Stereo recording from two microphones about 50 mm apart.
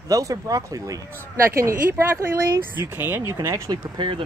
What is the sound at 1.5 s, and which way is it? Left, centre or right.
Speech, right.